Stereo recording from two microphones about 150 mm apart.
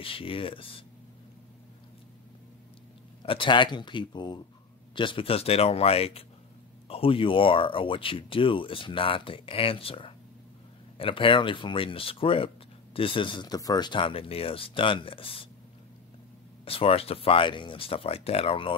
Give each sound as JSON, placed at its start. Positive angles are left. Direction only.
{"t": 0.0, "sound": "speech", "side_deg": 35}
{"t": 3.2, "sound": "speech", "side_deg": 35}
{"t": 16.6, "sound": "speech", "side_deg": 40}